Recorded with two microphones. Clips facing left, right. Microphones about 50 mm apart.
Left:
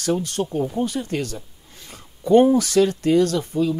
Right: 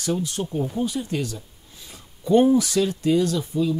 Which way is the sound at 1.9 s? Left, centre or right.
Left.